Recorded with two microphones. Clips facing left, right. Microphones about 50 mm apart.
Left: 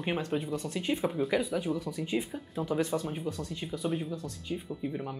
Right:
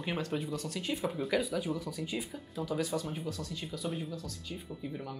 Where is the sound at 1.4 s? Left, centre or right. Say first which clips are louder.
Left 3 dB; centre.